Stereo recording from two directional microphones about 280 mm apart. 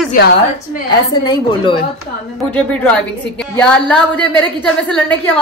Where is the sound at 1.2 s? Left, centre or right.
Centre.